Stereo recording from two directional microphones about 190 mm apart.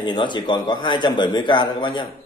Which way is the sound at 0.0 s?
25° left (ahead or behind).